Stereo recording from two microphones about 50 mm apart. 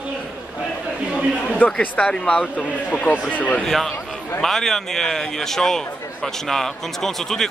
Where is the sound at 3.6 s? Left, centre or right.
Centre.